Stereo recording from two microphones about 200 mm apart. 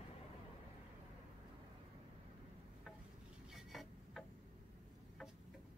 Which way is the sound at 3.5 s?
Centre (ahead or behind).